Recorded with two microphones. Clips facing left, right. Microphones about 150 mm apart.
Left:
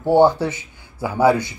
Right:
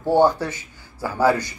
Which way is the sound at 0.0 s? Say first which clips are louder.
Left 3 dB; 15° left (ahead or behind).